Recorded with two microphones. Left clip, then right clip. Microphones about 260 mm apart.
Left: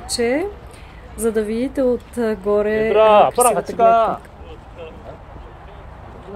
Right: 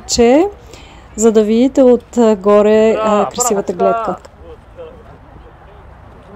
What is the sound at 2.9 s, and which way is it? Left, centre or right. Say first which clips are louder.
Speech: left 3 dB; left.